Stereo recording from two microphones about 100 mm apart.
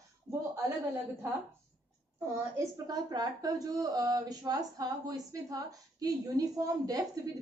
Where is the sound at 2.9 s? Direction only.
40° right (ahead or behind).